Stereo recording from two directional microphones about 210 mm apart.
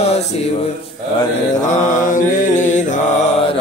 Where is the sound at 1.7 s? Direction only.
35° left (ahead or behind).